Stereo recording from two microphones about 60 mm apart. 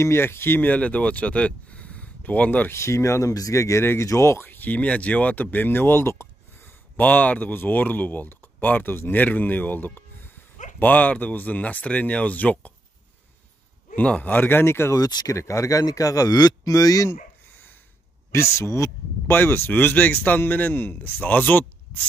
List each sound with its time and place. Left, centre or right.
0.0 s speech: left
0.7 s speech: left
2.7 s speech: left
4.5 s speech: left
7.0 s speech: left
10.8 s speech: left
13.9 s speech: left
15.0 s a man's voice: left
18.3 s speech: left